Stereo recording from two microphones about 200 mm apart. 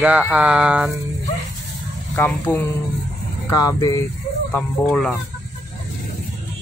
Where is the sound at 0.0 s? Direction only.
5° right (ahead or behind).